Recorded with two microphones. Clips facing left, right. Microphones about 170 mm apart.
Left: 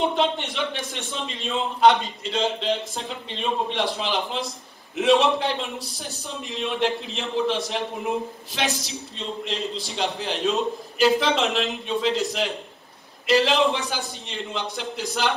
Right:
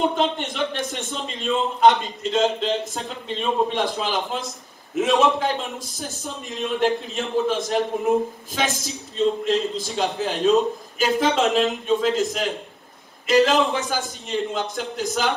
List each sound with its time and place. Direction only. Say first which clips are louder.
0.0 s a man's voice: right 1 dB; 45° right (ahead or behind)
13.5 s a man's voice: right 1 dB; 45° right (ahead or behind)